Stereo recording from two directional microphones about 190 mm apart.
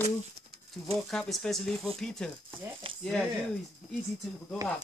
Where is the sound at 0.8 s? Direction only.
5° left (ahead or behind).